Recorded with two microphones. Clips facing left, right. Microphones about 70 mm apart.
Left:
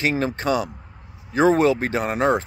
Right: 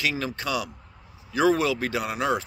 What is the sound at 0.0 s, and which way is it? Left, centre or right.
Speech, left.